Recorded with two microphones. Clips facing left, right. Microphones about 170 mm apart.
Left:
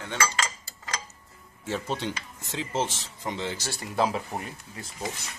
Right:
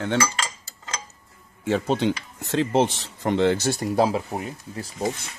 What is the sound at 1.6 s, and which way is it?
Speech, 65° right (ahead or behind).